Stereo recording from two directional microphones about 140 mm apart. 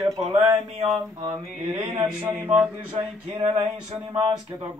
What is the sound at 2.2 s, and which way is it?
Mantra, 15° right (ahead or behind).